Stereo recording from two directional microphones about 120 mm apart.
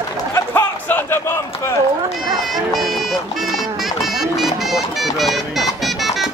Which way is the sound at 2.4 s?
Centre (ahead or behind).